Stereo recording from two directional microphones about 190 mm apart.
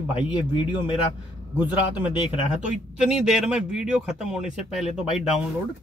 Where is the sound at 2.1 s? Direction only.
25° left (ahead or behind).